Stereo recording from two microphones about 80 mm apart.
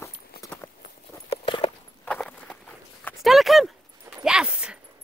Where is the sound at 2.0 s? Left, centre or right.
Centre.